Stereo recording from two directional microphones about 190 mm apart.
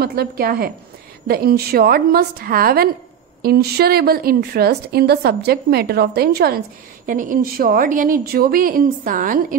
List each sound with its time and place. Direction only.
0.0 s a woman's voice: 55° right (ahead or behind)